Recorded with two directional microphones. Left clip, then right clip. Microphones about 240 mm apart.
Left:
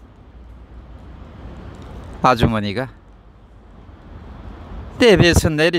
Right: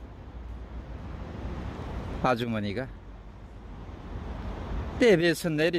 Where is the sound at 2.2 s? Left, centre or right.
Left.